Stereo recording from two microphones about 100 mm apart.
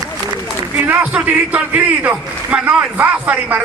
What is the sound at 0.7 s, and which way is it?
A man's voice, 15° right (ahead or behind).